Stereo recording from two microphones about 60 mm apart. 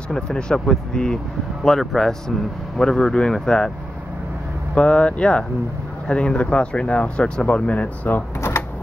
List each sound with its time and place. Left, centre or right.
0.1 s speech: centre
4.7 s speech: centre
8.4 s a sound: left